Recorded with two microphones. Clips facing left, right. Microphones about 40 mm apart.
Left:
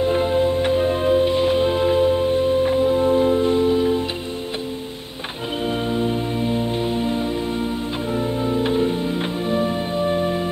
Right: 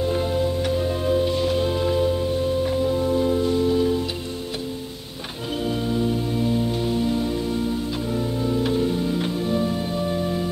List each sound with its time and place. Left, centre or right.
0.0 s music: left
5.7 s music: left